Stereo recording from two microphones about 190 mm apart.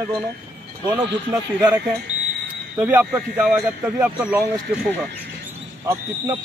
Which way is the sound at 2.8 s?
10° right (ahead or behind).